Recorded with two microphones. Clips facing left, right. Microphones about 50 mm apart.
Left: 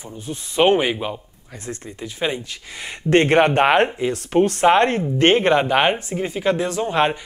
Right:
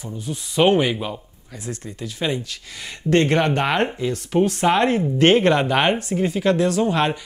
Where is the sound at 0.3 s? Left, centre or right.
Centre; by 3.7 s left.